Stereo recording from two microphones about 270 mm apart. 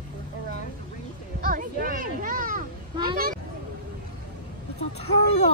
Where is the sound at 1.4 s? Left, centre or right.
Right.